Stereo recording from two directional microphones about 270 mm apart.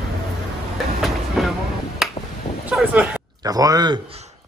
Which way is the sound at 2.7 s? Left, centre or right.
Centre.